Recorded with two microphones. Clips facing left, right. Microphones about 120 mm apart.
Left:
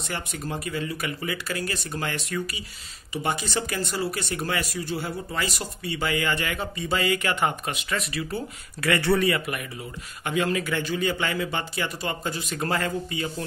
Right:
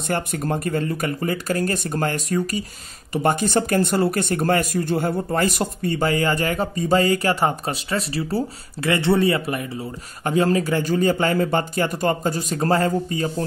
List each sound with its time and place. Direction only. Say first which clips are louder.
0.0 s speech: right 8 dB; 50° right (ahead or behind)